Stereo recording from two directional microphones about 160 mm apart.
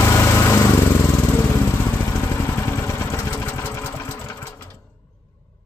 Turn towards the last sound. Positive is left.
turn(degrees=15)  # may be behind; listen again after turning